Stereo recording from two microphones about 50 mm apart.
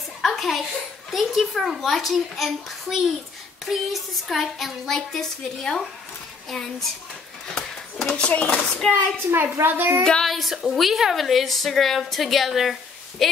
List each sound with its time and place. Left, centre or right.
0.2 s a sound: centre
1.1 s a woman's voice: centre
7.5 s a sound: centre
8.3 s chopping: left
8.9 s a woman's voice: right
10.2 s a woman's voice: centre